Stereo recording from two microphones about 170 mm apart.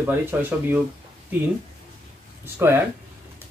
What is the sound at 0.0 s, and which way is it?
Speech, 10° right (ahead or behind).